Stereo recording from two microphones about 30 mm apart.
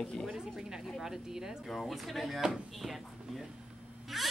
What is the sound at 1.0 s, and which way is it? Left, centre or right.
Speech, centre.